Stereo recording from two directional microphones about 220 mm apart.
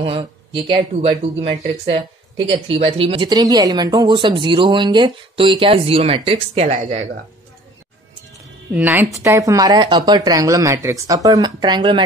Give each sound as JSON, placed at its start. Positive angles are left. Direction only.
{"t": 0.0, "sound": "speech", "side_deg": -25}
{"t": 8.7, "sound": "speech", "side_deg": -5}